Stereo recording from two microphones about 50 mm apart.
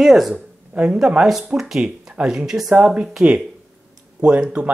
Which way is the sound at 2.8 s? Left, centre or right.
Right.